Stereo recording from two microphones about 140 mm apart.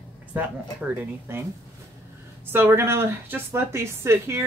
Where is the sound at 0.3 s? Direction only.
10° right (ahead or behind).